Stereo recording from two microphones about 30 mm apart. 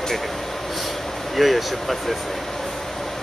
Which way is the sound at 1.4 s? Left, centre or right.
Centre.